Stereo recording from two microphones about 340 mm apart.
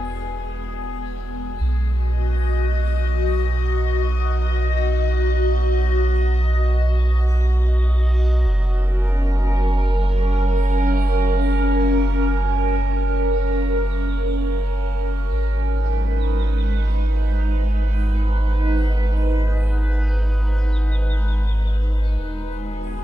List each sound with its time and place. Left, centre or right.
4.7 s music: left
9.5 s music: centre; by 12.3 s right
12.6 s music: right
18.6 s music: centre